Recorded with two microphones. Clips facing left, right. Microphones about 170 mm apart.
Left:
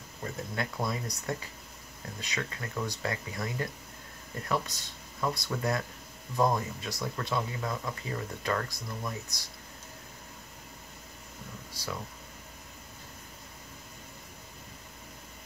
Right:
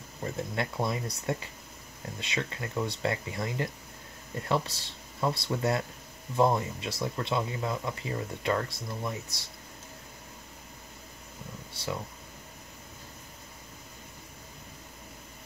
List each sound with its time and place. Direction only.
0.2 s speech: 25° right (ahead or behind)
11.7 s speech: 25° right (ahead or behind)